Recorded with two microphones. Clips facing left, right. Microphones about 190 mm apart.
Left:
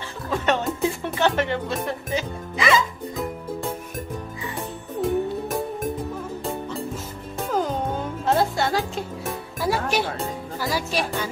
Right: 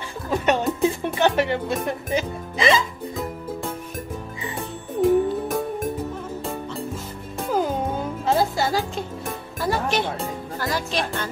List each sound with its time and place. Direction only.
0.3 s music: 15° right (ahead or behind)
1.0 s speech: 15° right (ahead or behind)
2.5 s speech: 25° right (ahead or behind)
5.0 s music: centre (ahead or behind)
7.5 s music: 5° right (ahead or behind)